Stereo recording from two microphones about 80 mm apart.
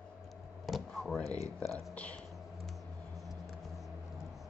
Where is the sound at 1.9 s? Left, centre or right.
Centre.